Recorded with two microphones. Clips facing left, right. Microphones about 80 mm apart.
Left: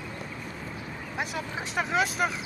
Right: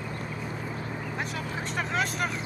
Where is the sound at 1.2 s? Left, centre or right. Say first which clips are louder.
Left 4 dB; centre.